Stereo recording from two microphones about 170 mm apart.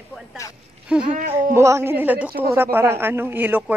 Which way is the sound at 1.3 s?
15° right (ahead or behind).